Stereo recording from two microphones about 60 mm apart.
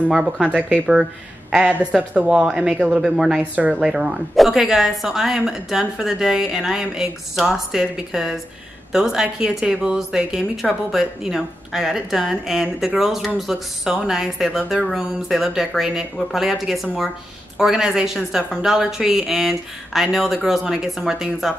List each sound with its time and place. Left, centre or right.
0.2 s speech: centre
3.9 s a woman's voice: centre